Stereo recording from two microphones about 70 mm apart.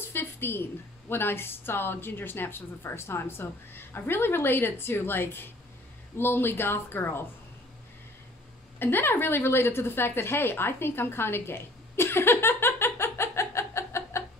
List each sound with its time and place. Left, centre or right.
0.0 s a woman's voice: left
8.7 s a woman's voice: left